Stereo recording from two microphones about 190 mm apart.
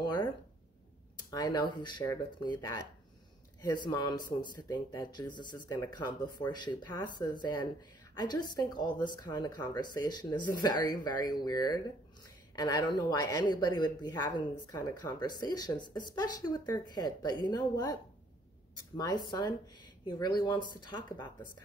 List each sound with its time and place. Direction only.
0.0 s a sound: 25° left (ahead or behind)
1.3 s speech: 20° left (ahead or behind)
18.9 s speech: 20° left (ahead or behind)